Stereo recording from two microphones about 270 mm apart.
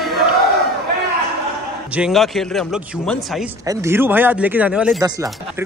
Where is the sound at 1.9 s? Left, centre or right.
Centre.